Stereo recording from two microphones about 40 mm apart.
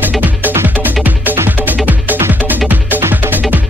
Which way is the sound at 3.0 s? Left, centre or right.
Right.